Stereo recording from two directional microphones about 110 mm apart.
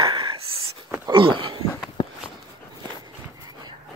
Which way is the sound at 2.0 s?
45° left (ahead or behind).